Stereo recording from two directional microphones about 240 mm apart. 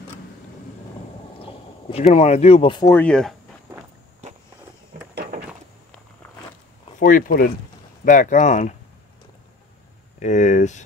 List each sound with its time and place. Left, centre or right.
1.4 s speech: left; by 3.3 s centre
7.0 s speech: left
10.1 s speech: left